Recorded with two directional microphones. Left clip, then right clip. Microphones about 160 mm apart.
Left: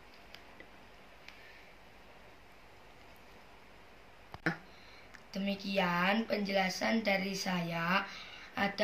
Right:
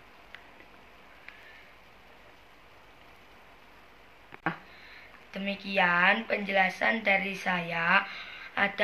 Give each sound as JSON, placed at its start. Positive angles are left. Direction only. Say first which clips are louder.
{"t": 5.3, "sound": "a woman's voice", "louder": "right 4 dB", "side_deg": 5}